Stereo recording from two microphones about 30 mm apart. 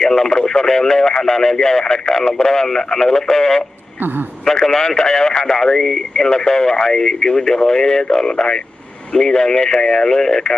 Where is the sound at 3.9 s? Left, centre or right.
Right.